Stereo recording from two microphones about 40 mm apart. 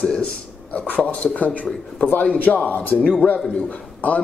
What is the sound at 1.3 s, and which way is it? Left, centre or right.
Speech, left.